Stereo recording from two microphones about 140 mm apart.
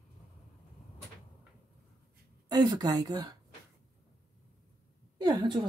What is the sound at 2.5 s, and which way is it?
Speech, 30° right (ahead or behind).